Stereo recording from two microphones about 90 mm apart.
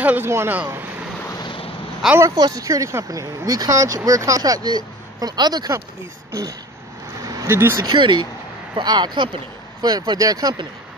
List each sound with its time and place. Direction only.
0.0 s speech: 20° right (ahead or behind)
1.4 s a sound: 70° left (ahead or behind)
2.3 s speech: 40° right (ahead or behind)
7.2 s vehicle: 40° right (ahead or behind)
7.4 s speech: 25° right (ahead or behind)
7.8 s speech: 60° right (ahead or behind)
9.8 s speech: 45° right (ahead or behind)